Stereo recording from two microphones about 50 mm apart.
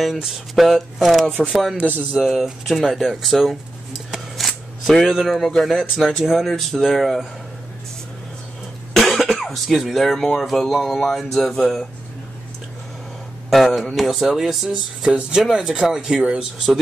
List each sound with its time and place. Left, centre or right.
0.0 s speech: centre
1.2 s speech: centre
2.1 s speech: centre
4.4 s shuffling cards: centre
5.0 s speech: centre
8.9 s cough: centre
10.4 s speech: centre
13.5 s speech: centre